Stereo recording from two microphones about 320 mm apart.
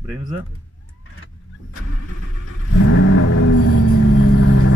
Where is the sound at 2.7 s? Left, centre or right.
Left.